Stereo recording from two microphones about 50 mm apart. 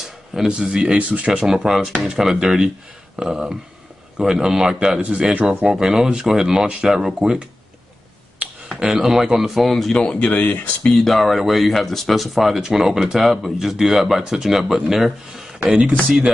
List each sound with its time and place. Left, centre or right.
0.0 s a sound: centre
0.5 s speech: centre
0.9 s speech: right
1.4 s speech: centre; by 5.4 s right
5.7 s speech: centre
8.4 s a sound: right
8.7 s speech: right
9.0 s speech: centre
9.7 s speech: centre
10.3 s speech: left
10.6 s speech: left
11.1 s speech: centre
15.6 s speech: right